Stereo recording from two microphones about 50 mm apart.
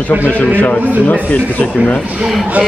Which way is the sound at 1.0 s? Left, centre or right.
Left.